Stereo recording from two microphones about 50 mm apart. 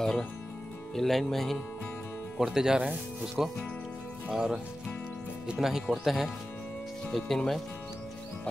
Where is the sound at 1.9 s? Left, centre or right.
Left.